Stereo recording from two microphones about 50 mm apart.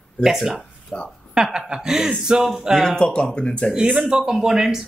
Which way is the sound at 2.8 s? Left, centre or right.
Centre.